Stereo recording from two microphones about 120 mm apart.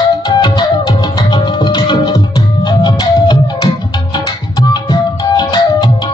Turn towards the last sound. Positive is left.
turn(degrees=35)  # may be behind; listen again after turning